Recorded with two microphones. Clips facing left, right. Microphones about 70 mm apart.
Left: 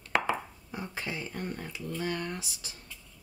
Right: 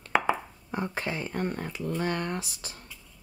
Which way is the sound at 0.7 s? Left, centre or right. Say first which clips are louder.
Right 7 dB; right.